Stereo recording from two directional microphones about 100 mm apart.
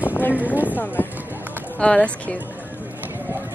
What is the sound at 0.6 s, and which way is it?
Speech, 15° left (ahead or behind).